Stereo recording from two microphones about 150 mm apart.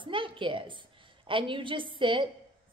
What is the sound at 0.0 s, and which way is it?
A woman's voice, 35° right (ahead or behind).